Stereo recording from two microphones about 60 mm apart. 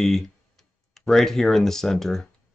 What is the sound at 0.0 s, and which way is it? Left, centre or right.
Speech, centre.